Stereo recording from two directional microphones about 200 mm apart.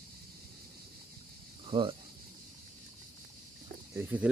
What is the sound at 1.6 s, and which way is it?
Speech, 25° right (ahead or behind).